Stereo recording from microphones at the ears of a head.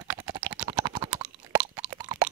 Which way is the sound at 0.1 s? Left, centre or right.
Right.